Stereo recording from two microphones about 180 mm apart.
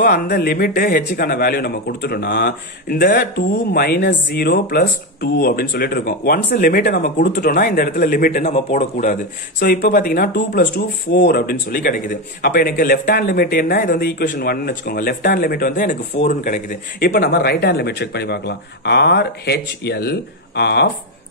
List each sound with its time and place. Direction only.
0.0 s speech: 55° left (ahead or behind)
8.5 s speech: 40° left (ahead or behind); by 20.9 s 65° left (ahead or behind)